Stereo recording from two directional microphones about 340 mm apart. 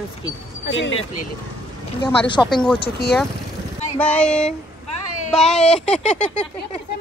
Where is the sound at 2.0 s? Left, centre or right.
Centre.